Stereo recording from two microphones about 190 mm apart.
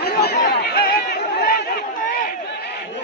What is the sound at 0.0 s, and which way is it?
Chatter, 55° left (ahead or behind).